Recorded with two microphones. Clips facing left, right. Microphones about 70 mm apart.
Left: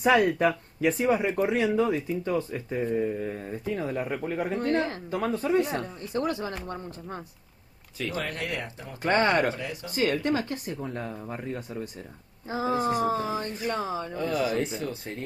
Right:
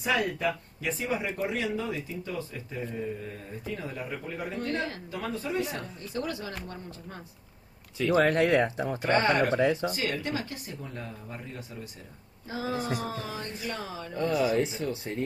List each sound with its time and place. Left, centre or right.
0.0 s speech: left
8.1 s speech: right
8.4 s speech: right
9.0 s speech: left
9.6 s speech: right
9.9 s speech: left
14.3 s speech: centre